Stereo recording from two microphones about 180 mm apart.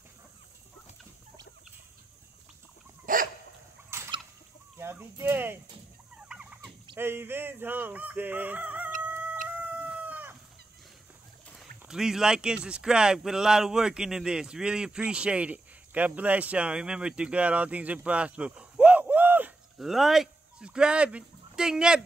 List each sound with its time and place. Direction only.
3.1 s dog: 50° right (ahead or behind)
3.9 s fowl: 15° right (ahead or behind)
6.2 s rodents: 5° right (ahead or behind)
7.0 s fowl: 10° right (ahead or behind)
9.6 s chicken: 5° right (ahead or behind)
11.5 s speech: 5° right (ahead or behind)